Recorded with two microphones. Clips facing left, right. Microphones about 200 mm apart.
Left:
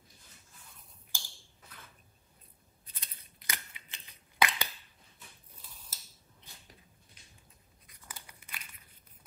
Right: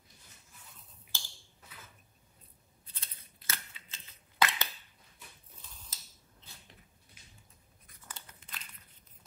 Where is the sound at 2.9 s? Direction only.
15° left (ahead or behind).